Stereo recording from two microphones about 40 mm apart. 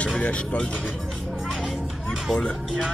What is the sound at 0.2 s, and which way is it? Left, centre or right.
Speech, left.